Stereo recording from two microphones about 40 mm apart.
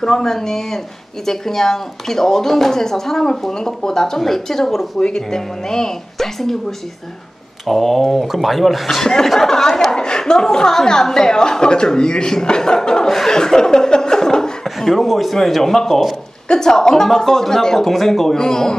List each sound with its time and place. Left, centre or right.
0.0 s speech: centre
7.6 s speech: centre
8.8 s speech: centre
13.1 s laughter: centre
14.8 s speech: centre